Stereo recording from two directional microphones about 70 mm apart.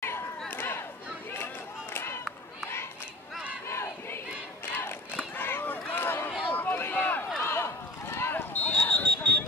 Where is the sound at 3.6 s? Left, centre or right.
Left.